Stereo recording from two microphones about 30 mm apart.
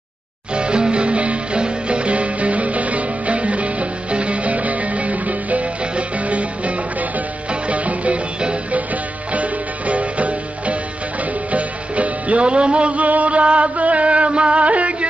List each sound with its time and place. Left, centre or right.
0.6 s music: right
9.3 s music: right
12.4 s music: right
13.0 s music: right